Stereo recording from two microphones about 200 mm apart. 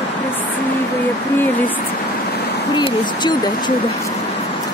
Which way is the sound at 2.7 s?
20° left (ahead or behind).